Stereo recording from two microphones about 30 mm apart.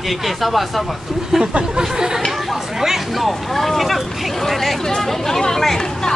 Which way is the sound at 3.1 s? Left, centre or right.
Centre.